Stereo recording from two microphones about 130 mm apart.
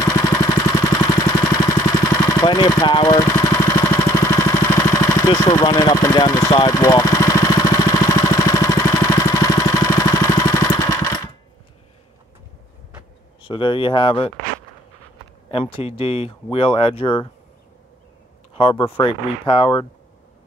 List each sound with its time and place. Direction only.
0.0 s engine: 30° left (ahead or behind)
4.8 s speech: 25° left (ahead or behind)
6.5 s vehicle: 30° left (ahead or behind)
13.4 s speech: 40° left (ahead or behind)
15.5 s speech: 45° left (ahead or behind)
18.5 s speech: 45° left (ahead or behind)